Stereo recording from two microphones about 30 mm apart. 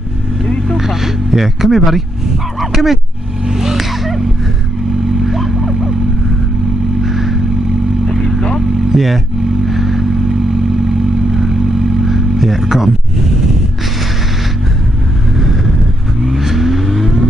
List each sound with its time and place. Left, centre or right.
0.7 s vehicle: centre
2.6 s speech: centre
3.4 s vehicle: centre
5.2 s vehicle: centre
7.0 s vehicle: centre
8.1 s vehicle: centre
8.9 s speech: centre
9.7 s vehicle: centre
11.3 s vehicle: centre
16.3 s vehicle: centre